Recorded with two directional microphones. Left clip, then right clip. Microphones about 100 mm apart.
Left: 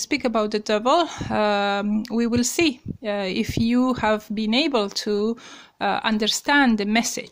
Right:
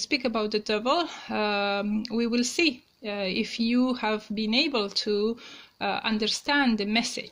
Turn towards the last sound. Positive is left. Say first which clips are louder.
# left 6 dB
turn(degrees=60)  # may be behind; listen again after turning